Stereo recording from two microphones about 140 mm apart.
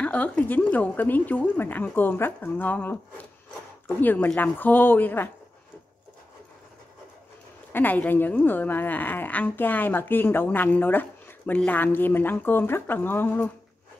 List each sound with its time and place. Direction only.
0.0 s speech: 10° left (ahead or behind)
7.7 s speech: 10° left (ahead or behind)